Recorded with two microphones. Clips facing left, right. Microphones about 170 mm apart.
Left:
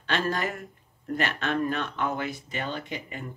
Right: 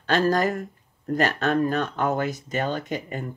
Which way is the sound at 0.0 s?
40° right (ahead or behind).